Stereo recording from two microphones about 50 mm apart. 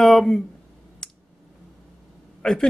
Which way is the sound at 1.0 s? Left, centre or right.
Centre.